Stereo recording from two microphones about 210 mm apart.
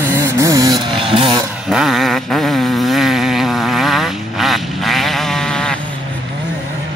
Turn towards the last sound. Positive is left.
turn(degrees=5)  # may be behind; listen again after turning